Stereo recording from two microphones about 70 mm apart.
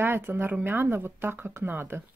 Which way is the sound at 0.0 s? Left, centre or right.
Right.